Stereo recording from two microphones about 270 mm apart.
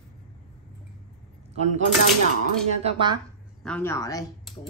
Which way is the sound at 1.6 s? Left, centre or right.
Right.